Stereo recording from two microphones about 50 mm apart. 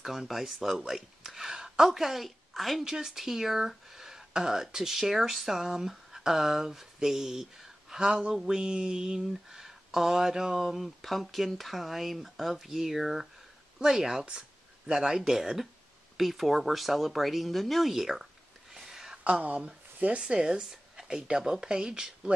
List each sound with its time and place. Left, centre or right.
0.3 s speech: centre
2.8 s speech: centre
19.2 s speech: right
20.2 s speech: centre